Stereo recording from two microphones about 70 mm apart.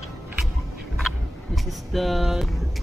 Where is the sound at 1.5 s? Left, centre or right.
Centre.